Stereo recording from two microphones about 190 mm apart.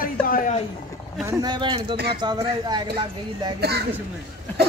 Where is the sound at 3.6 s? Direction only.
60° right (ahead or behind).